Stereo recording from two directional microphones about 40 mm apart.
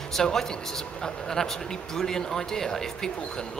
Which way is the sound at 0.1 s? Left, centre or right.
Centre.